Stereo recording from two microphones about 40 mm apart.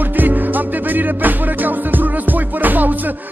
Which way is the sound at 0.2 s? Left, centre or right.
Right.